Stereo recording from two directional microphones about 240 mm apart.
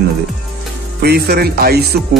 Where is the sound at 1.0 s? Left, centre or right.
Right.